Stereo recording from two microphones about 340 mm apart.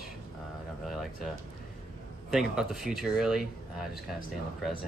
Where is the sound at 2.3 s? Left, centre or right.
Centre.